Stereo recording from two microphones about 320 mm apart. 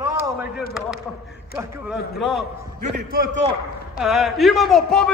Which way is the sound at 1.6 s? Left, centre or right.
Centre.